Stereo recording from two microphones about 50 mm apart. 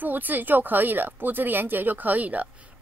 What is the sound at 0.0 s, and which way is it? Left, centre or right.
A woman's voice, right.